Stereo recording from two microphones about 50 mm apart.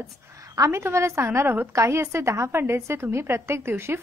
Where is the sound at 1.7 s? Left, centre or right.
Right.